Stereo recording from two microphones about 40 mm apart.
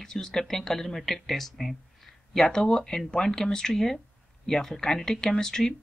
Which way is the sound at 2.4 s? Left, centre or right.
Centre.